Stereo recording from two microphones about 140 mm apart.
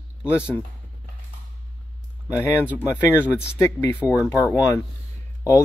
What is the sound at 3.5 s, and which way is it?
Speech, 15° left (ahead or behind).